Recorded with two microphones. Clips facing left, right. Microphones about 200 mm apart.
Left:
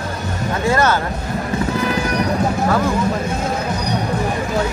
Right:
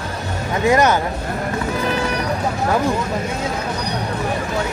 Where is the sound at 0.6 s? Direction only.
15° right (ahead or behind).